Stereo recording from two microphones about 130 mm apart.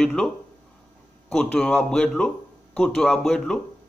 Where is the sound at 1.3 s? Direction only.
5° left (ahead or behind).